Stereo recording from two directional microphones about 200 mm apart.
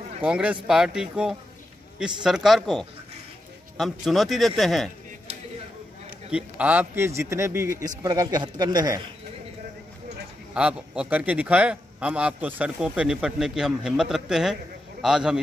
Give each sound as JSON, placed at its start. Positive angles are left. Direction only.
{"t": 0.2, "sound": "a man's voice", "side_deg": -5}
{"t": 6.3, "sound": "a man's voice", "side_deg": -5}
{"t": 10.5, "sound": "a man's voice", "side_deg": -5}